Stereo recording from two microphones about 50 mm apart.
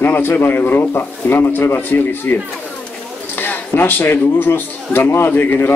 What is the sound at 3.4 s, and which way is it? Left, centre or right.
A man's voice, left.